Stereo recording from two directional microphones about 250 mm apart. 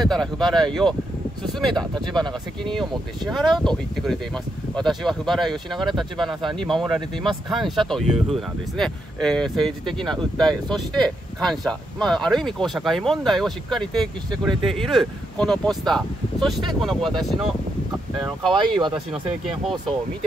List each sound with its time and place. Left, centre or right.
0.0 s speech: centre
2.1 s speech: centre
18.5 s speech: centre
19.4 s speech: centre